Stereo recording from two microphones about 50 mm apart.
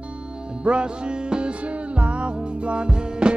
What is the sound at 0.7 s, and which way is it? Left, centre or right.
Music, centre.